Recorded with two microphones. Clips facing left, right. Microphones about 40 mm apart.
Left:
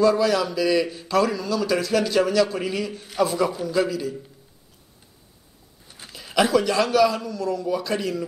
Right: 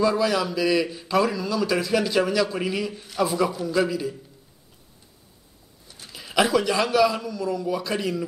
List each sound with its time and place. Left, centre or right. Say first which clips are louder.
0.0 s a man's voice: left 3 dB; centre
5.9 s a sound: left 2 dB; centre
6.1 s a man's voice: left 1 dB; centre